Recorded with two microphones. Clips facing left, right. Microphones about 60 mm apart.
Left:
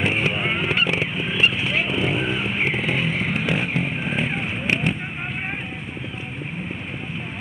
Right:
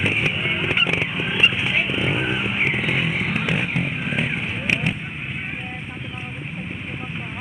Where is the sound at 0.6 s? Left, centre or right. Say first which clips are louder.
Even; centre.